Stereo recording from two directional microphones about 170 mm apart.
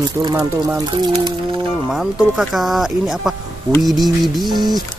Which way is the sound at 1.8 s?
Centre (ahead or behind).